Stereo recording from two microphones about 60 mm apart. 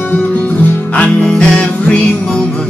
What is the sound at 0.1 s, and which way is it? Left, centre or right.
Music, left.